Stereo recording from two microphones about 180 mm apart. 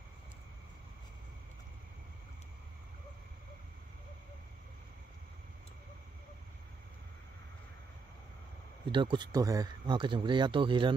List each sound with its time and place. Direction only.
8.9 s speech: 25° right (ahead or behind)